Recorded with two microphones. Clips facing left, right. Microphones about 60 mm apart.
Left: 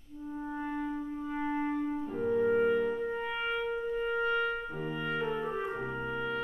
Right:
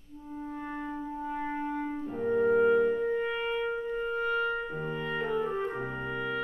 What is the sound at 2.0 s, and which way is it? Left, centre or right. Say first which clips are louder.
Clarinet: right 4 dB; centre.